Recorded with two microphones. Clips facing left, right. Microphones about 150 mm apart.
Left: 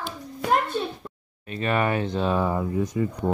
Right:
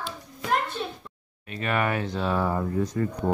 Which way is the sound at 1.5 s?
30° left (ahead or behind).